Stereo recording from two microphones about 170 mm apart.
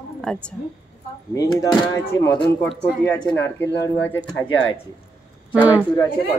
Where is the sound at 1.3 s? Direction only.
25° left (ahead or behind).